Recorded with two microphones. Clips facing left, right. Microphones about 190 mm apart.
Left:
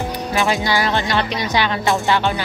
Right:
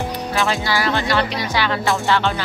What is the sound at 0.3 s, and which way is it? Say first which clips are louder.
Music: left 2 dB; 15° left (ahead or behind).